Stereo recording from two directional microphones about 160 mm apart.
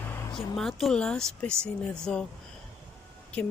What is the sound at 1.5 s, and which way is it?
Speech, 15° right (ahead or behind).